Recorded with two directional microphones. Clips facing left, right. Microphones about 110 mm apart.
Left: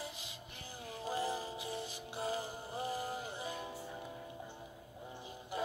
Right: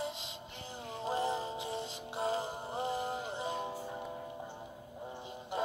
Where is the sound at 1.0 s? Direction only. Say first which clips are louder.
Right 4 dB; 25° right (ahead or behind).